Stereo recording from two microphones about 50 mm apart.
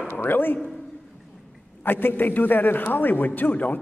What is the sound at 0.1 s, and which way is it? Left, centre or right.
Speech, left.